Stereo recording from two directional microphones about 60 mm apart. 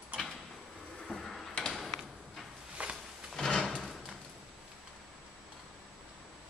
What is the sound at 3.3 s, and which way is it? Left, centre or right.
Drawer open or close, centre.